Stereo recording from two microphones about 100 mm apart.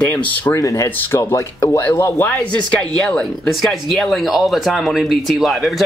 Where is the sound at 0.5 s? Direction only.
30° left (ahead or behind).